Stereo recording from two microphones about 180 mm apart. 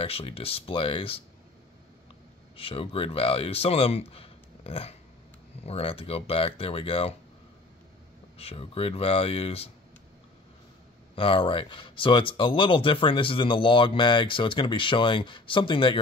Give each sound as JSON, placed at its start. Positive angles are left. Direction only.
{"t": 0.0, "sound": "speech", "side_deg": 30}
{"t": 2.5, "sound": "speech", "side_deg": 30}
{"t": 8.4, "sound": "speech", "side_deg": 30}
{"t": 11.1, "sound": "speech", "side_deg": 30}